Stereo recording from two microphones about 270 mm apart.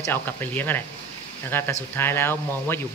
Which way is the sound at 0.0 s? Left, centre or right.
Centre.